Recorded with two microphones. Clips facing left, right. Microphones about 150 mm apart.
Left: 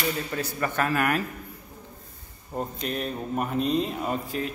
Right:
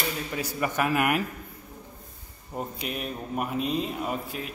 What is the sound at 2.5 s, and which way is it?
A man's voice, 10° right (ahead or behind).